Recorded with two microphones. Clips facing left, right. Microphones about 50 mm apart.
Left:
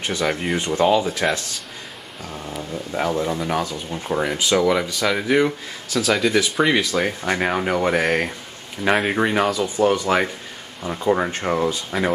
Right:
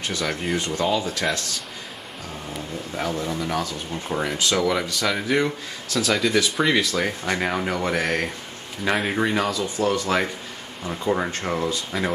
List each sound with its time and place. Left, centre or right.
0.0 s speech: left
1.0 s speech: centre
2.4 s speech: centre